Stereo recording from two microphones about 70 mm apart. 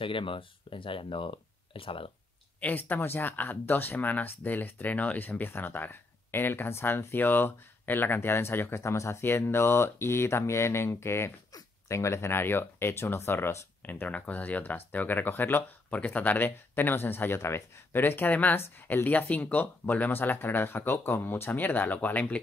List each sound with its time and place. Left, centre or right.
2.6 s speech: left
8.8 s speech: left
9.2 s speech: left
13.8 s speech: left
18.6 s speech: left
19.0 s speech: left